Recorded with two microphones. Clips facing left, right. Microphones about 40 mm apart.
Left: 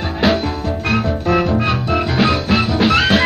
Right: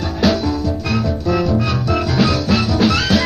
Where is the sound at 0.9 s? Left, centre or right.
Left.